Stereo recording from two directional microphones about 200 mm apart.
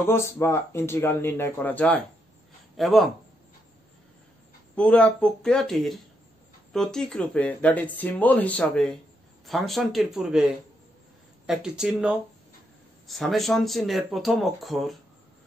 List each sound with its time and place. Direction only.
0.0 s speech: 15° left (ahead or behind)
4.7 s speech: 5° left (ahead or behind)